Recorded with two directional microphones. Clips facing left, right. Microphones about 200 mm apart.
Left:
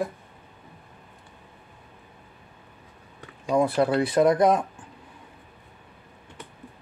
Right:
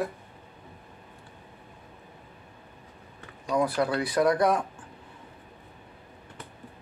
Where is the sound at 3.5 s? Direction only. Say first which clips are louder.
Left 4 dB; 25° left (ahead or behind).